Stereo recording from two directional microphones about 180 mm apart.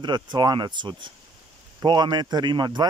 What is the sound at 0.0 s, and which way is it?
A man's voice, 25° right (ahead or behind).